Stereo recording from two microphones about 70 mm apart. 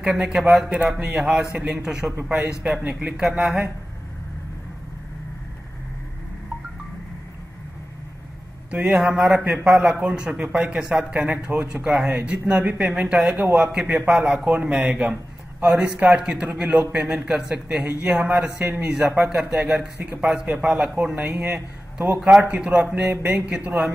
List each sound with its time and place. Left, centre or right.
0.0 s a man's voice: centre
8.6 s a man's voice: centre
9.7 s a man's voice: centre